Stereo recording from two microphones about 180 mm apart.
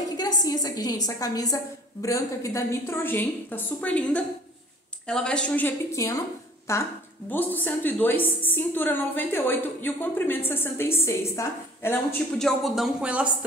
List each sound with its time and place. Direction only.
0.2 s a woman's voice: 20° left (ahead or behind); by 13.3 s 5° right (ahead or behind)